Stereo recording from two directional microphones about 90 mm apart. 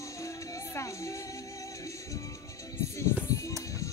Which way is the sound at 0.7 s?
35° left (ahead or behind).